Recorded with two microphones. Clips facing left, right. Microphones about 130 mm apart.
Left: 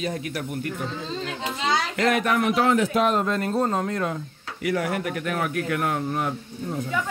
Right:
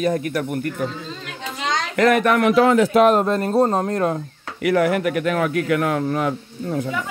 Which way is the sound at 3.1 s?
40° right (ahead or behind).